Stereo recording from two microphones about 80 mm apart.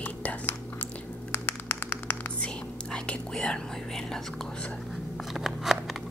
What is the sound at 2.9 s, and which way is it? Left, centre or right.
Whispering, centre.